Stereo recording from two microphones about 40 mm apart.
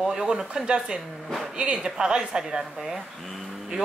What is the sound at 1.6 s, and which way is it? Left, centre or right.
Speech, right.